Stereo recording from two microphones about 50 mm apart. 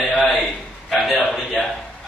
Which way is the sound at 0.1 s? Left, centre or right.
Left.